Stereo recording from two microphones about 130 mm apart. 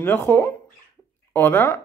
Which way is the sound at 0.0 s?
15° left (ahead or behind).